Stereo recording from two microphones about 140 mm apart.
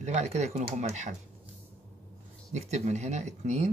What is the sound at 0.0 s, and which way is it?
Speech, 50° right (ahead or behind).